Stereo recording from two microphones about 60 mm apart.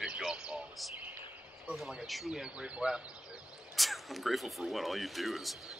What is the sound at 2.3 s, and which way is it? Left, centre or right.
Speech, centre.